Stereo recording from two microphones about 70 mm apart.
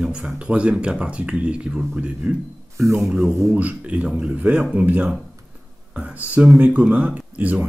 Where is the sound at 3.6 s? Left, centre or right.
Centre.